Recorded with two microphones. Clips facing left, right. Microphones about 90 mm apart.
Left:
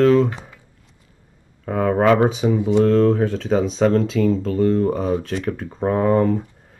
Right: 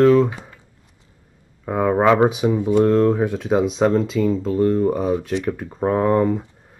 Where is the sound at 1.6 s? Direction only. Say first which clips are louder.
Right 1 dB; 15° right (ahead or behind).